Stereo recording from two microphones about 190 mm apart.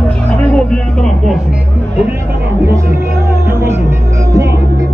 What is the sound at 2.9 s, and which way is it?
Music, 15° right (ahead or behind).